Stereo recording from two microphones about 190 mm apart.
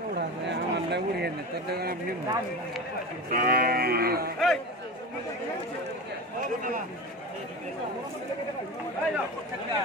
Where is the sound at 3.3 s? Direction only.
50° right (ahead or behind).